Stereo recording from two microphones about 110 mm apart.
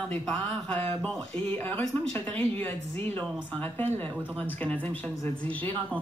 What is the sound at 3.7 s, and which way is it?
Speech, 20° left (ahead or behind).